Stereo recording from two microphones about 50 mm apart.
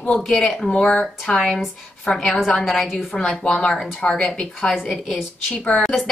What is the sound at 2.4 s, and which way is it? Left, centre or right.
Speech, centre.